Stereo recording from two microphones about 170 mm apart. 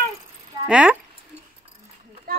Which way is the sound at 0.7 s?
5° right (ahead or behind).